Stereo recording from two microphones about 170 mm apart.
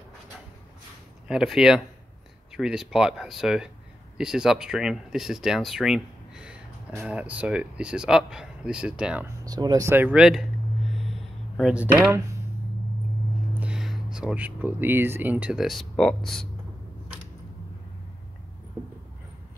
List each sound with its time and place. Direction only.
1.2 s speech: centre (ahead or behind)
9.4 s speech: 25° right (ahead or behind); by 10.4 s 5° right (ahead or behind)
11.0 s a sound: centre (ahead or behind)
13.6 s speech: 5° right (ahead or behind)